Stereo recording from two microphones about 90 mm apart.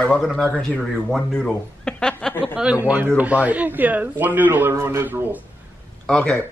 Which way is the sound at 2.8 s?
15° right (ahead or behind).